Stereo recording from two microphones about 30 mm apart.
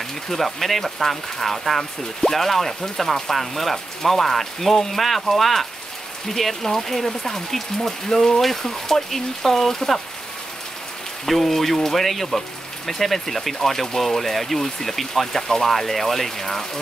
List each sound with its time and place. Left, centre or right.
0.3 s speech: centre
11.2 s speech: centre
15.4 s speech: centre
15.7 s speech: centre